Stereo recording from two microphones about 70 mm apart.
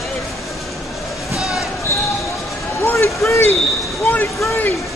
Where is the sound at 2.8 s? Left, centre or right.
Left.